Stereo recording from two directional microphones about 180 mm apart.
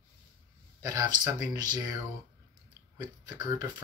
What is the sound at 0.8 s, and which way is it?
Speech, 20° right (ahead or behind).